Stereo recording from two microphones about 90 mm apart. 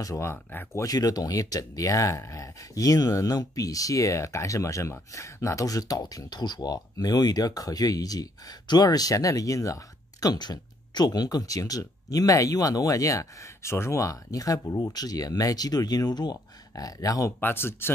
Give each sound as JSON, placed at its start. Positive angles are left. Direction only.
{"t": 0.0, "sound": "speech", "side_deg": 35}
{"t": 0.7, "sound": "speech", "side_deg": 45}
{"t": 17.4, "sound": "speech", "side_deg": 25}